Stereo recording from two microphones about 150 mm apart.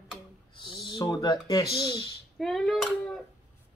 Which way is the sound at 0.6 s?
30° left (ahead or behind).